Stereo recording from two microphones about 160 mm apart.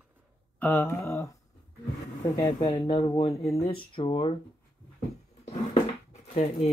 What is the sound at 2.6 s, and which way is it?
Speech, 30° left (ahead or behind).